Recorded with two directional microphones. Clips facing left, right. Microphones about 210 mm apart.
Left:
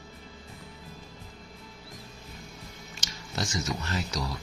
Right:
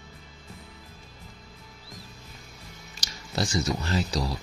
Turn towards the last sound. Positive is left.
turn(degrees=-30)  # may be behind; listen again after turning